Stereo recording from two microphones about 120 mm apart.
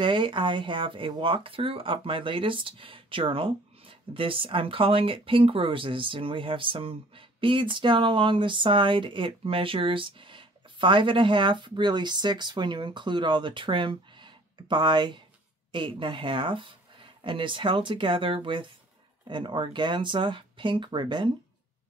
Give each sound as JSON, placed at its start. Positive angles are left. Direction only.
{"t": 0.0, "sound": "speech", "side_deg": -45}